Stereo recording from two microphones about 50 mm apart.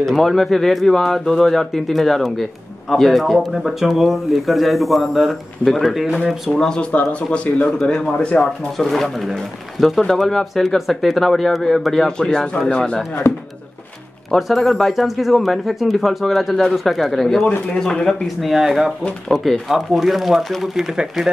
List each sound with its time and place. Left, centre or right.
0.0 s speech: centre
6.6 s speech: centre
6.9 s speech: left
8.7 s speech: centre
13.2 s speech: left
14.3 s speech: centre
18.2 s speech: centre